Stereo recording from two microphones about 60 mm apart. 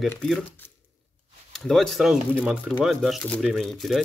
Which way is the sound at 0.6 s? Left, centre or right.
Left.